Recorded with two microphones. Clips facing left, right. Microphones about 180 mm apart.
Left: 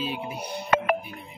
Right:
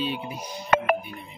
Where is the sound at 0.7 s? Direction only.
55° right (ahead or behind).